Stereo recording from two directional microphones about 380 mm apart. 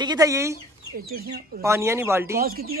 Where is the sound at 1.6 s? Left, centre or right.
Centre.